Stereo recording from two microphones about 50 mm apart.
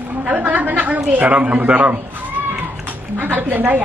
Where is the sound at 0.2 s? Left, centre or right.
Right.